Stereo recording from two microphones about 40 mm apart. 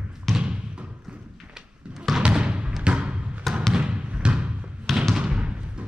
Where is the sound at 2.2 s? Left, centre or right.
Right.